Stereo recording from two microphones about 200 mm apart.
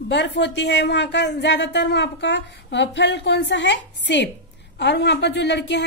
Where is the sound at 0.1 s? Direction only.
60° left (ahead or behind).